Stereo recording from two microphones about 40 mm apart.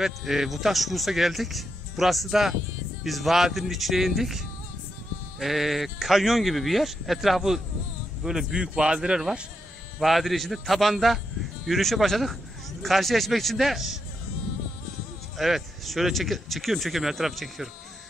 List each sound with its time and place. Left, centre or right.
0.0 s speech: centre
9.9 s speech: centre
15.3 s speech: centre